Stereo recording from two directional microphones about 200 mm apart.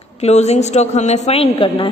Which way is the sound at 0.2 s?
35° left (ahead or behind).